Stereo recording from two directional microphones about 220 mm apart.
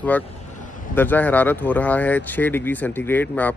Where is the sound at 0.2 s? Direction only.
35° left (ahead or behind).